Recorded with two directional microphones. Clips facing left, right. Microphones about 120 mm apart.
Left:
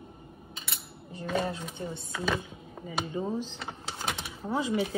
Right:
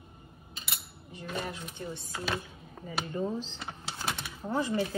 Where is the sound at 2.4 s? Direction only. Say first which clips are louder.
Left 3 dB; 15° left (ahead or behind).